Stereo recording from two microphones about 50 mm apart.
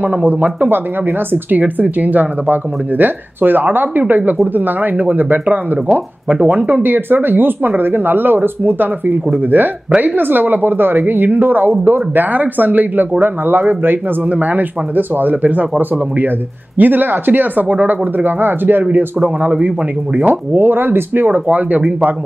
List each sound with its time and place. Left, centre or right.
0.0 s speech: right
5.1 s speech: right
14.3 s speech: right